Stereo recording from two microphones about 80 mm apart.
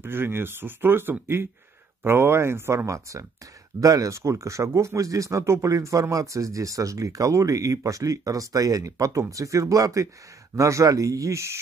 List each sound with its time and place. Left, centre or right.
0.0 s speech: right